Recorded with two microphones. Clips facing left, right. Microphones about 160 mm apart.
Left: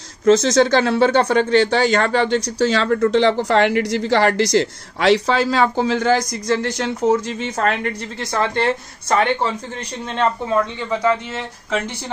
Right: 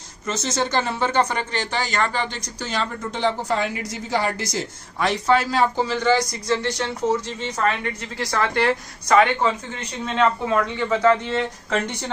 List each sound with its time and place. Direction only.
0.2 s speech: 90° left
5.9 s speech: 45° left (ahead or behind)
8.2 s a woman's voice: 20° left (ahead or behind)
10.9 s speech: 10° left (ahead or behind)